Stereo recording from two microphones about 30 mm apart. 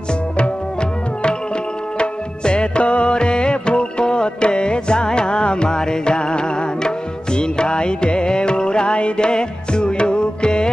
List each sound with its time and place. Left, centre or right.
2.0 s music: left